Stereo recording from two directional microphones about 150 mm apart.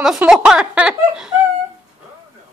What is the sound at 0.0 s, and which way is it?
Speech, 5° right (ahead or behind).